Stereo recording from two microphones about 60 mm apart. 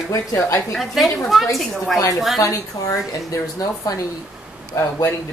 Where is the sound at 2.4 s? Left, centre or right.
Left.